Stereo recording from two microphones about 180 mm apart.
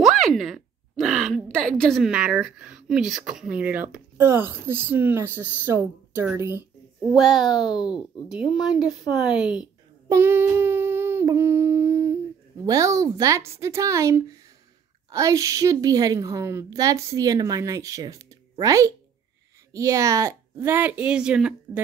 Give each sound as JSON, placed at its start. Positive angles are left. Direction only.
{"t": 0.0, "sound": "a sound", "side_deg": 0}
{"t": 1.8, "sound": "speech", "side_deg": 0}
{"t": 10.0, "sound": "humming", "side_deg": -15}
{"t": 12.6, "sound": "a woman's voice", "side_deg": -20}